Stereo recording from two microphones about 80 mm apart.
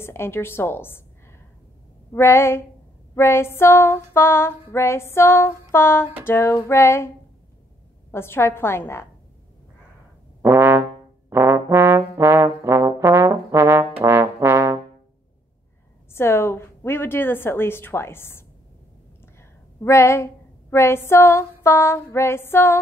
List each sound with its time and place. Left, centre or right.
0.0 s female singing: left
2.1 s female singing: left
8.1 s female singing: left
10.4 s music: right
11.2 s trombone: right
16.1 s female singing: left
19.8 s female singing: left